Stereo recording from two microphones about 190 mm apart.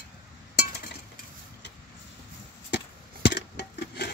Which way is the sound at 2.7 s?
65° left (ahead or behind).